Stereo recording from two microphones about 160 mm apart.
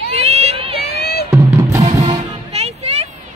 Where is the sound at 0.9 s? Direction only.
80° left.